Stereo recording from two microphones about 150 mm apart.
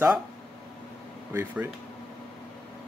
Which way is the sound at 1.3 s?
15° right (ahead or behind).